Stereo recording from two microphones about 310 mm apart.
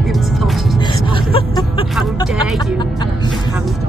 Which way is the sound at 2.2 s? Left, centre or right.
Centre.